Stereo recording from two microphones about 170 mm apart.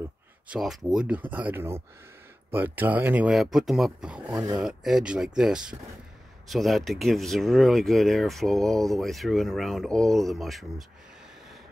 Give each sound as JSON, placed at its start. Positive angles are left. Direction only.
{"t": 0.5, "sound": "speech", "side_deg": 0}
{"t": 4.3, "sound": "speech", "side_deg": -20}
{"t": 4.6, "sound": "speech", "side_deg": 0}